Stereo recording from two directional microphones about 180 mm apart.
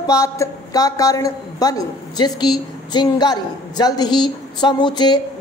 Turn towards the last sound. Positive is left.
turn(degrees=25)  # may be behind; listen again after turning